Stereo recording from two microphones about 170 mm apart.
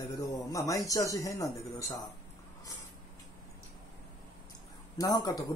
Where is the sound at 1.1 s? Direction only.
20° left (ahead or behind).